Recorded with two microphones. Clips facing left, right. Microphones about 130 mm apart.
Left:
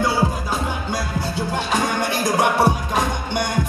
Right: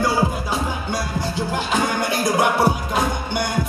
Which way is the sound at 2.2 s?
5° right (ahead or behind).